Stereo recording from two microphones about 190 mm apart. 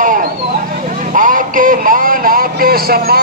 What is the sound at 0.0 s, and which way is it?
Vehicle, 45° right (ahead or behind).